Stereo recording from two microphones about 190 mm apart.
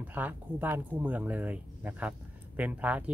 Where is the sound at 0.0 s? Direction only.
10° right (ahead or behind).